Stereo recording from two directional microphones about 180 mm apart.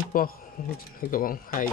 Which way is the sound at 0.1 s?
50° left (ahead or behind).